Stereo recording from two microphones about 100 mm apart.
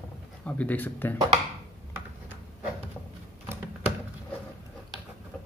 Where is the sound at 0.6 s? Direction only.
15° left (ahead or behind).